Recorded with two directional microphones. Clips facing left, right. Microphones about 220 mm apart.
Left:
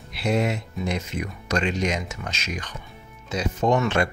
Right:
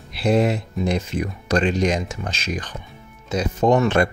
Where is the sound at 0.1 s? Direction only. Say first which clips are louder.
Right 5 dB; 35° right (ahead or behind).